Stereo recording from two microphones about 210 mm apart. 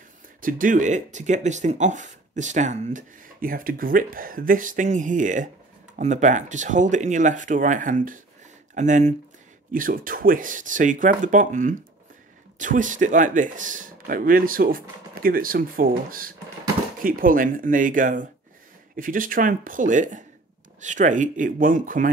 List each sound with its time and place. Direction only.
0.4 s speech: 40° right (ahead or behind)